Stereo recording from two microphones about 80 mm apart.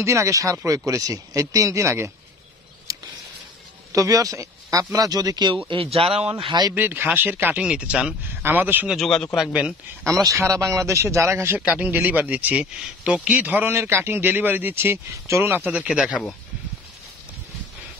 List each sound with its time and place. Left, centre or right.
0.0 s speech: right
2.9 s a sound: right
3.9 s speech: right
6.4 s speech: right
6.7 s speech: right
7.6 s speech: centre
8.4 s speech: right
8.8 s speech: centre
9.5 s speech: centre
10.0 s a man's voice: right
11.6 s speech: centre